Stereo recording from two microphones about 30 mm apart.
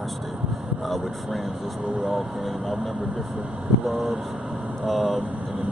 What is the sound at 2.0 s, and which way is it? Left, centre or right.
Speech, centre.